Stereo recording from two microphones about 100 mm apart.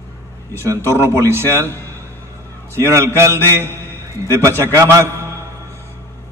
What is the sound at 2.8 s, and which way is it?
A man's voice, 30° right (ahead or behind).